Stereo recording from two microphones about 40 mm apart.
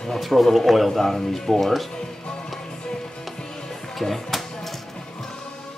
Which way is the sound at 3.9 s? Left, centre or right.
Centre.